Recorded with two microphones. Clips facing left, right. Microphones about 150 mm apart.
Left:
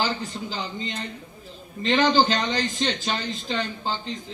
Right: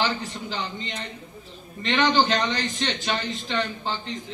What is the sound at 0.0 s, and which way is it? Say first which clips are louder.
A man's voice: even; 35° left (ahead or behind).